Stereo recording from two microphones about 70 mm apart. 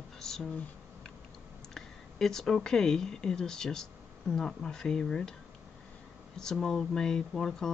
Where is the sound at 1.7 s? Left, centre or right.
Centre.